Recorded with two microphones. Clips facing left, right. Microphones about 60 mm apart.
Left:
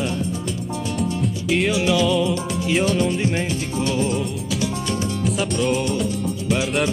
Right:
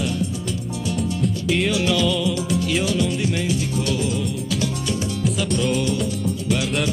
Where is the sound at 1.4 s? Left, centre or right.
Centre.